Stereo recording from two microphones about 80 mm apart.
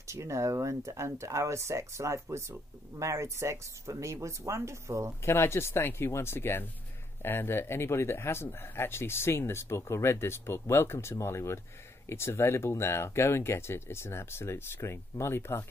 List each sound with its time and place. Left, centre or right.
0.0 s speech: right
5.2 s speech: left